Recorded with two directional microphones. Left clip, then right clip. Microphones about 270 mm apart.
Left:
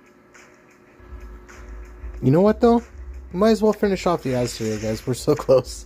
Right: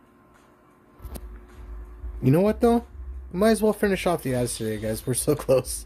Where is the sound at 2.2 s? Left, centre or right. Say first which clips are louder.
Left 4 dB; centre.